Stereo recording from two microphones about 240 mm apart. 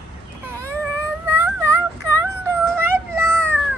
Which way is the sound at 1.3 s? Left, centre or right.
Centre.